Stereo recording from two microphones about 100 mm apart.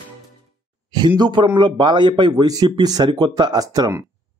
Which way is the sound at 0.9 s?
45° right (ahead or behind).